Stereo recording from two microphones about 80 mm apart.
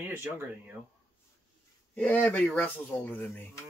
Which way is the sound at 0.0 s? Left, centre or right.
Right.